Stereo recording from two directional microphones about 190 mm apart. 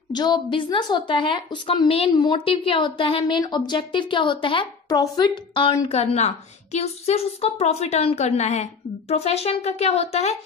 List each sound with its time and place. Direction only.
0.1 s a woman's voice: 20° left (ahead or behind)